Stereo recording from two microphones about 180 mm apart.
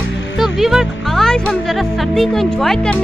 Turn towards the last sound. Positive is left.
turn(degrees=5)  # may be behind; listen again after turning